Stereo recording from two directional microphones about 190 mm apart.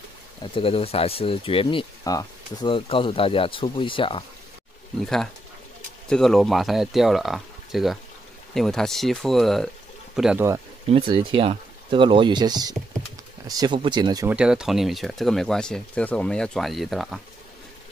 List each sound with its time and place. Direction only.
0.4 s speech: 30° left (ahead or behind)
5.0 s speech: centre (ahead or behind)
10.9 s speech: 25° right (ahead or behind)
14.3 s speech: 5° right (ahead or behind)